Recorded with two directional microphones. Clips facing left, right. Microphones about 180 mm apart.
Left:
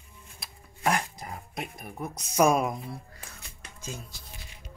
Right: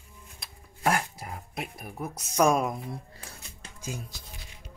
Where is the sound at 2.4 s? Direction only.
Centre (ahead or behind).